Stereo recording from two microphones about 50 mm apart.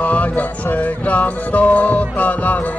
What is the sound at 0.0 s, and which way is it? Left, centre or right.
Music, left.